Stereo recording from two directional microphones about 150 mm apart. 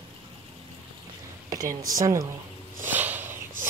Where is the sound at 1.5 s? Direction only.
25° right (ahead or behind).